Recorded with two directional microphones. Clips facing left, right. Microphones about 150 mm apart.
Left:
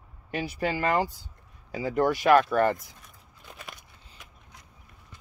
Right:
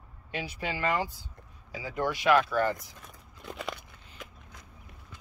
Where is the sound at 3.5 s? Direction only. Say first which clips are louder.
Right 8 dB; 75° right (ahead or behind).